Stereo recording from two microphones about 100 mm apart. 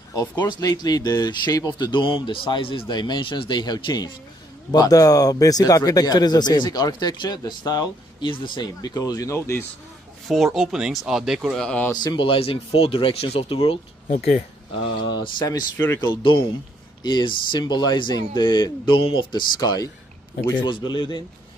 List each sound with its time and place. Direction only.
0.4 s speech: 45° left (ahead or behind)
10.2 s speech: centre (ahead or behind)
11.5 s speech: 10° left (ahead or behind)
11.9 s speech: 40° left (ahead or behind)
12.2 s speech: 65° left (ahead or behind)
14.8 s speech: 45° left (ahead or behind)
19.6 s speech: 40° left (ahead or behind)